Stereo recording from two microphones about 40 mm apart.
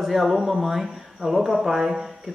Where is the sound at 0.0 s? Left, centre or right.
Centre.